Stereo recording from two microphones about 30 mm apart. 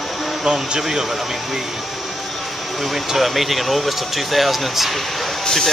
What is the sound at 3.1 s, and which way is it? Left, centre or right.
Speech, centre.